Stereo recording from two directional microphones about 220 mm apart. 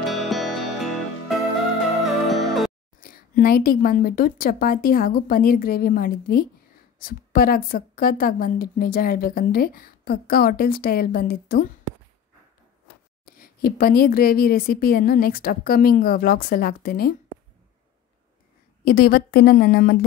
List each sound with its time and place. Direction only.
0.0 s music: centre (ahead or behind)
2.0 s music: centre (ahead or behind)
3.0 s a woman's voice: 40° left (ahead or behind)
13.2 s a woman's voice: 40° left (ahead or behind)
18.9 s a woman's voice: 40° left (ahead or behind)